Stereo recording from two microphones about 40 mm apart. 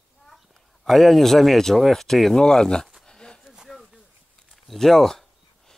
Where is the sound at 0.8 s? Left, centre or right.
Centre.